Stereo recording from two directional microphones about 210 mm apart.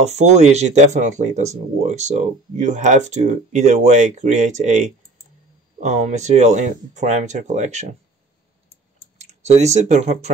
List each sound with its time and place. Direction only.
0.0 s speech: 30° right (ahead or behind)
9.2 s speech: 30° right (ahead or behind)